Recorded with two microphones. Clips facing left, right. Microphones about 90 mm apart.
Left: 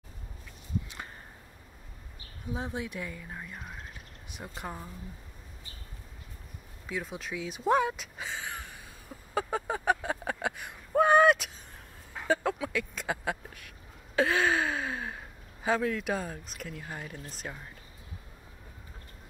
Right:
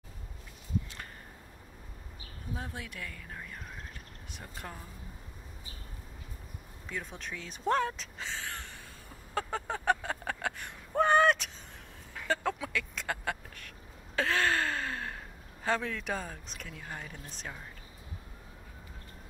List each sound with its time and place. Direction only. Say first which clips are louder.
2.5 s speech: left 6 dB; 20° left (ahead or behind)
6.9 s speech: left 4 dB; 5° left (ahead or behind)
9.3 s a sound: left 3 dB; 10° left (ahead or behind)